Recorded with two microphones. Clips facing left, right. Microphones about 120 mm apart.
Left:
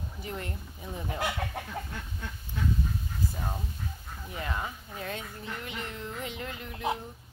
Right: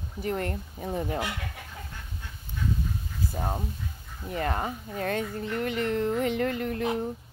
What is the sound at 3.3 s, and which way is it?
Speech, 45° right (ahead or behind).